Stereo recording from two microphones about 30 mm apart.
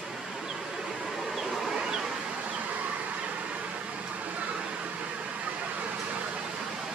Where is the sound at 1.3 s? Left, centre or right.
Centre.